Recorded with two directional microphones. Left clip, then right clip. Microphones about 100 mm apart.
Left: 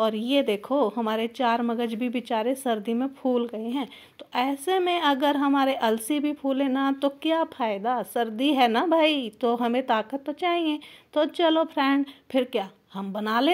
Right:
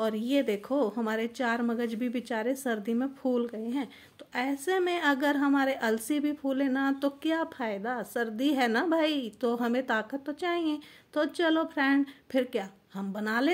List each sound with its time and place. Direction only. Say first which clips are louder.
0.0 s a woman's voice: left 5 dB; 25° left (ahead or behind)